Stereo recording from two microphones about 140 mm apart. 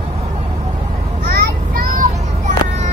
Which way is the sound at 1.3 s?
85° right.